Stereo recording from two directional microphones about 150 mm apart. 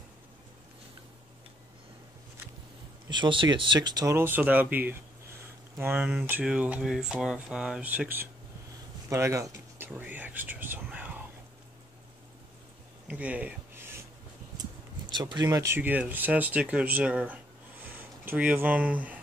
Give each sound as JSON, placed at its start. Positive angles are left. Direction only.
{"t": 3.1, "sound": "speech", "side_deg": -30}
{"t": 9.1, "sound": "whispering", "side_deg": -20}
{"t": 13.1, "sound": "a sound", "side_deg": -10}
{"t": 14.6, "sound": "speech", "side_deg": -30}